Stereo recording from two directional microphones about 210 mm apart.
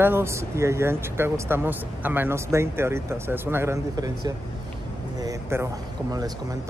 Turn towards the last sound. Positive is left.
turn(degrees=-15)  # may be behind; listen again after turning